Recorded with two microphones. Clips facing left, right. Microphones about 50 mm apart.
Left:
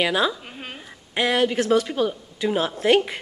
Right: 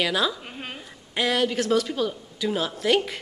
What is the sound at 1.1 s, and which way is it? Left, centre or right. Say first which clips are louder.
Speech: left 3 dB; left.